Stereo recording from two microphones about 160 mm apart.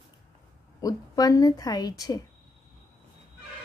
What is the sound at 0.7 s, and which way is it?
A woman's voice, 20° left (ahead or behind).